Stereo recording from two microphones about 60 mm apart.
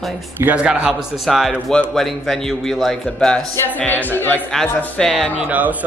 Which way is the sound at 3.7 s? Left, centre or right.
Left.